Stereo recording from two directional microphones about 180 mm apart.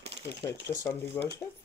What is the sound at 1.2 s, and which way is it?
Speech, 15° left (ahead or behind).